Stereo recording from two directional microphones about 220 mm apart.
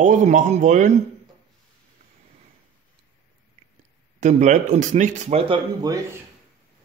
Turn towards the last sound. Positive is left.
turn(degrees=-20)  # may be behind; listen again after turning